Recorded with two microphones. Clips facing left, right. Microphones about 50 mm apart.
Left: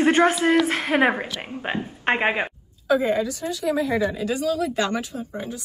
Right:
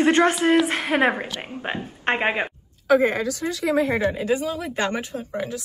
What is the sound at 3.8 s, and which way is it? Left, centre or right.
Speech, right.